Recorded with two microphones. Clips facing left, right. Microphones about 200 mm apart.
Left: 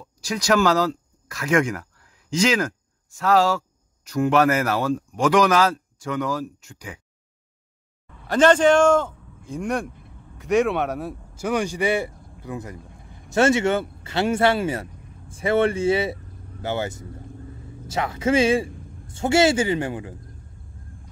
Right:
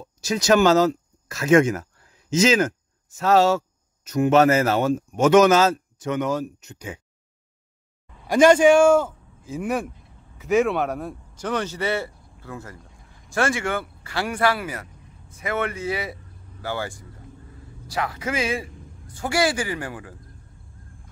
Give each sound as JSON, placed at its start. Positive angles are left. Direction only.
{"t": 0.0, "sound": "speech", "side_deg": -25}
{"t": 8.3, "sound": "a man's voice", "side_deg": -10}